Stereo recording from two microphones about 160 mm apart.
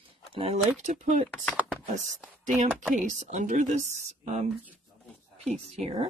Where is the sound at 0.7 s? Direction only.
50° right (ahead or behind).